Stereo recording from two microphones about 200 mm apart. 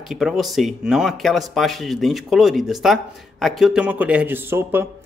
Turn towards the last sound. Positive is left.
turn(degrees=-10)  # may be behind; listen again after turning